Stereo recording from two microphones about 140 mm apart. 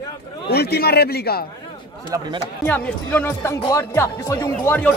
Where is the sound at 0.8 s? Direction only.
90° left.